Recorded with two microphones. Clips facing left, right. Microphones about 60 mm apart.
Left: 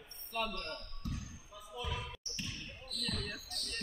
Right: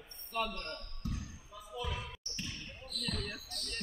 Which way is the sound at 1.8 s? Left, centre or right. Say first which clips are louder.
Right 1 dB; centre.